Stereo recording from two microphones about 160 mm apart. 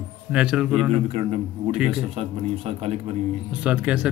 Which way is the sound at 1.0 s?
35° right (ahead or behind).